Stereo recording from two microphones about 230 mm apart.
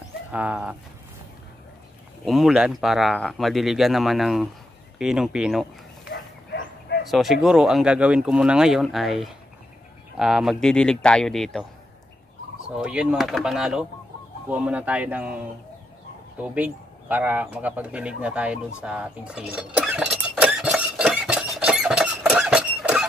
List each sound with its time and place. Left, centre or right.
0.3 s speech: centre
2.2 s speech: centre
6.1 s bow-wow: left
7.1 s speech: centre
12.6 s speech: centre
16.3 s bird: centre